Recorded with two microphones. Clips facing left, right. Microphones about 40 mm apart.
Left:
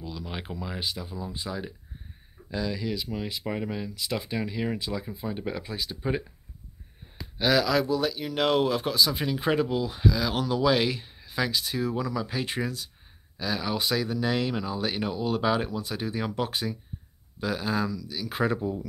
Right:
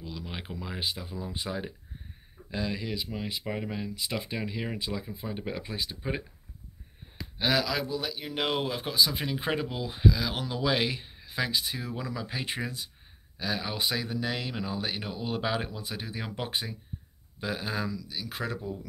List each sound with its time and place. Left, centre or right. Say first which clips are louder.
0.0 s a sound: left 3 dB; centre
0.6 s speech: even; right
1.1 s speech: even; right
2.5 s speech: left 2 dB; right; by 3.9 s centre
3.9 s speech: left 3 dB; centre
7.3 s speech: left 5 dB; centre
10.1 s speech: left 5 dB; centre
15.1 s speech: left 5 dB; centre
18.3 s speech: left 9 dB; left